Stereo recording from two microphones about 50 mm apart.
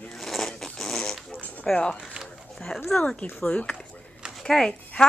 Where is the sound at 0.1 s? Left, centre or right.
Centre.